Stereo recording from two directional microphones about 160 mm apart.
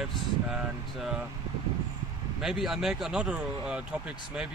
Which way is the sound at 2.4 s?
Centre (ahead or behind).